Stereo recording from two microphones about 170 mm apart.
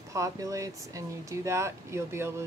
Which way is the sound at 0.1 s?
20° right (ahead or behind).